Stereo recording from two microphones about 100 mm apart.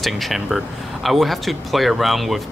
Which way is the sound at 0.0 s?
Centre (ahead or behind).